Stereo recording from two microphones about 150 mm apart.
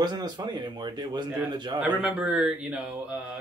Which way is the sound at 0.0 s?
30° right (ahead or behind).